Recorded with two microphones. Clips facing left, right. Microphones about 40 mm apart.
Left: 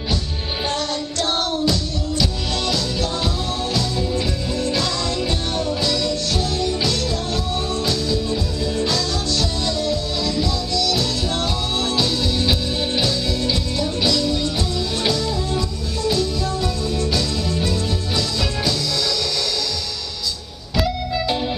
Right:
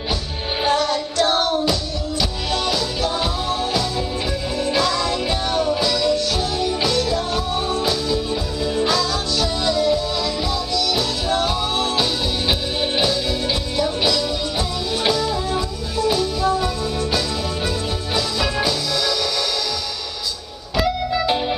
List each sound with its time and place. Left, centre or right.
0.7 s music: centre
4.6 s music: centre
20.7 s music: centre